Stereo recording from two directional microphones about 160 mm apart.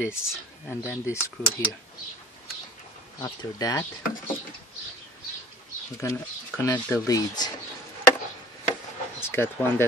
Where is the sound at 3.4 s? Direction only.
25° left (ahead or behind).